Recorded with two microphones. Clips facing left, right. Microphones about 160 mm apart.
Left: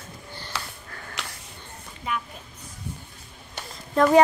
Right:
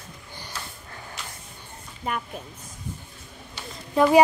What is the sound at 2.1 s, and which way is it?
Speech, 45° right (ahead or behind).